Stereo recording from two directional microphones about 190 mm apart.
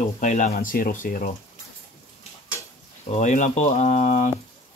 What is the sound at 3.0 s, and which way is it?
Speech, 40° left (ahead or behind).